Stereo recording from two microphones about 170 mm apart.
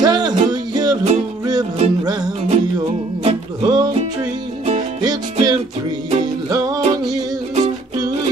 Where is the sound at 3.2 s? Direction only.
25° right (ahead or behind).